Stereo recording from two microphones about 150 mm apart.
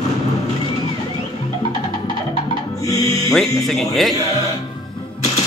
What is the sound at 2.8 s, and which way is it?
Music, 20° left (ahead or behind).